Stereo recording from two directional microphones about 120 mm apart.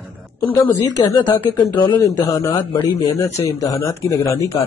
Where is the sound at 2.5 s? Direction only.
40° left (ahead or behind).